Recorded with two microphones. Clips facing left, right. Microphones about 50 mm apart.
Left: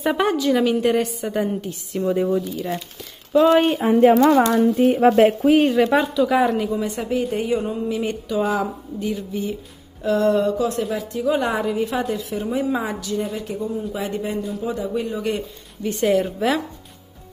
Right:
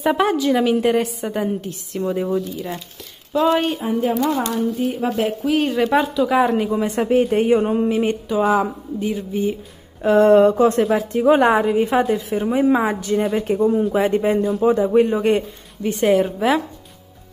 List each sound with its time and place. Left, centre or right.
0.0 s a woman's voice: centre
3.8 s speech: left
4.7 s speech: left
5.6 s a woman's voice: centre
6.5 s a sound: right
7.0 s a woman's voice: right
7.9 s a sound: right
8.4 s speech: centre
10.0 s a woman's voice: right
12.3 s a sound: right
12.6 s a woman's voice: right
13.3 s a woman's voice: right
15.8 s speech: centre